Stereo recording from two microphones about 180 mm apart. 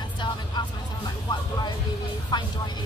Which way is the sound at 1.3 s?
25° left (ahead or behind).